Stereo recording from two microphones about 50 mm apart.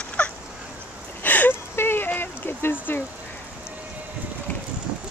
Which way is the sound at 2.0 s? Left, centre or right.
Left.